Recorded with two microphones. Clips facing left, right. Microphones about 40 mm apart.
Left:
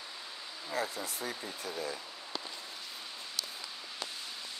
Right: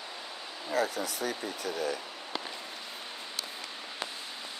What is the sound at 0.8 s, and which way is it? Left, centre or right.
Speech, right.